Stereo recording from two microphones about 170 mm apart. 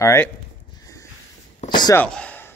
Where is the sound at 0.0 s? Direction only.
15° left (ahead or behind).